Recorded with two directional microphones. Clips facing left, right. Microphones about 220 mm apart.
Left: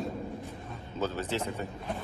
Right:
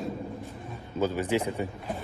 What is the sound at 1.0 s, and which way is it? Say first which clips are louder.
Speech: right 5 dB; 10° right (ahead or behind).